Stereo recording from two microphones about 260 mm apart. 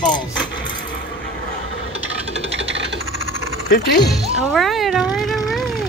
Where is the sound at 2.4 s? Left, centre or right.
Right.